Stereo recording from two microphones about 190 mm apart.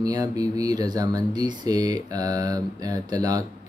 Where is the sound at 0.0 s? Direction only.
20° right (ahead or behind).